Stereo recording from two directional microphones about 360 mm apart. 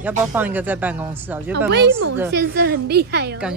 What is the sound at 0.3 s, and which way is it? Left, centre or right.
Speech, centre.